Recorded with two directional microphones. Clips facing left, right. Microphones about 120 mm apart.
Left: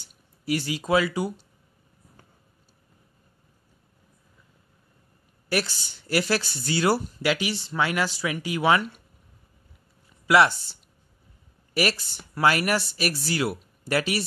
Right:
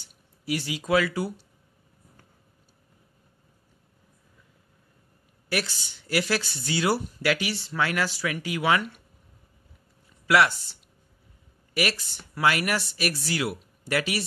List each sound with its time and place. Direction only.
0.5 s speech: 45° left (ahead or behind)
0.8 s speech: 20° left (ahead or behind)
5.5 s speech: 35° left (ahead or behind)
7.2 s speech: 20° left (ahead or behind)
10.2 s speech: 25° left (ahead or behind)